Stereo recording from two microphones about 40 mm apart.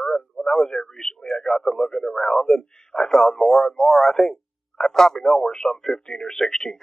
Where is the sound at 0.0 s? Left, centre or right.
Centre.